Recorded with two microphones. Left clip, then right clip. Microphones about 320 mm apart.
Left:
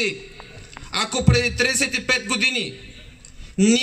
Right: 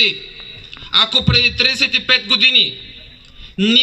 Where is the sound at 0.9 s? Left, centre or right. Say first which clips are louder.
Right 8 dB; centre.